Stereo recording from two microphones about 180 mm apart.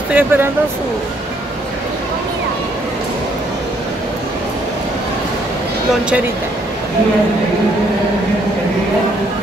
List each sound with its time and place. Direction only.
0.1 s speech: 10° right (ahead or behind)